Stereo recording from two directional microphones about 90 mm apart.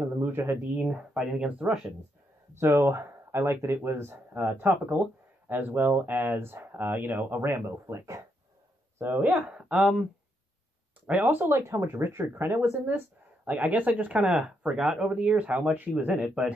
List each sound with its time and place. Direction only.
0.2 s a sound: 25° right (ahead or behind)
0.7 s speech: 10° right (ahead or behind)
2.6 s speech: 25° right (ahead or behind)
7.6 s speech: 35° right (ahead or behind)
8.9 s speech: 20° right (ahead or behind)
11.1 s speech: 20° right (ahead or behind)